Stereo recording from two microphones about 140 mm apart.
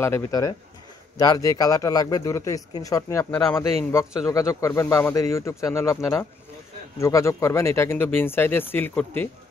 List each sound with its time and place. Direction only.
0.0 s a man's voice: 20° left (ahead or behind)
3.3 s a man's voice: 5° left (ahead or behind)
4.3 s a man's voice: 25° left (ahead or behind)